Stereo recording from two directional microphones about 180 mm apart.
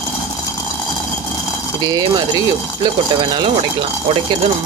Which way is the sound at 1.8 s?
20° right (ahead or behind).